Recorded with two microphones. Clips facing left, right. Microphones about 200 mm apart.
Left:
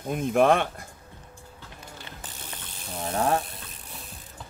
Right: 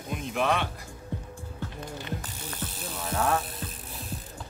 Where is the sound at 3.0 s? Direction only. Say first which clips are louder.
Left 2 dB; 30° left (ahead or behind).